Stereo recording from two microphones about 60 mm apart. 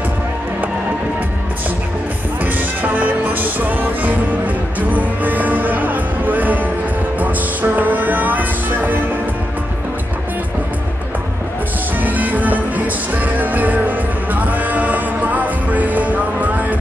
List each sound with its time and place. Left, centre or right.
2.4 s music: right
12.0 s music: right